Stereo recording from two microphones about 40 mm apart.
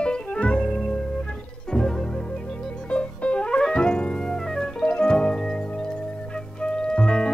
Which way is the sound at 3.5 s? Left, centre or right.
Centre.